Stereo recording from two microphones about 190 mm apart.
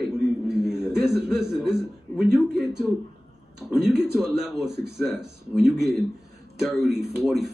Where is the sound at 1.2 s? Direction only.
5° right (ahead or behind).